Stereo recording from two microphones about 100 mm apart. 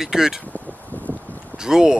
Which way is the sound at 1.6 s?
5° right (ahead or behind).